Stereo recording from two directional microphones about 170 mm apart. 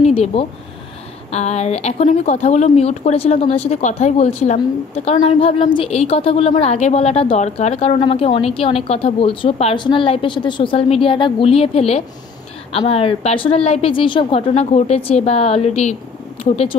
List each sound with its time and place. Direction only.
0.0 s a woman's voice: 35° left (ahead or behind)